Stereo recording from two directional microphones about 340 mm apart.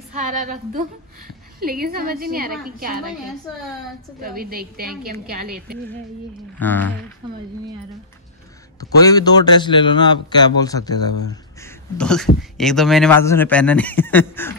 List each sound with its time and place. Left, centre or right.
0.7 s a woman's voice: right
4.2 s a woman's voice: right
6.6 s speech: centre
9.0 s a man's voice: centre